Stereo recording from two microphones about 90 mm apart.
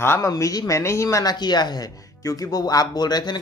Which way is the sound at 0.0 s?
25° left (ahead or behind).